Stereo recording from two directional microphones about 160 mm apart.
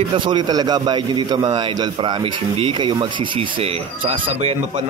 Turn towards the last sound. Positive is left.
turn(degrees=-35)  # may be behind; listen again after turning